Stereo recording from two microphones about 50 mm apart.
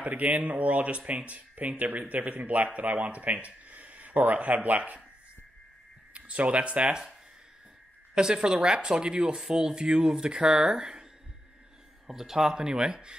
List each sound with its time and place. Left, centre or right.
0.0 s speech: right
6.1 s speech: right
8.1 s speech: centre
12.1 s speech: centre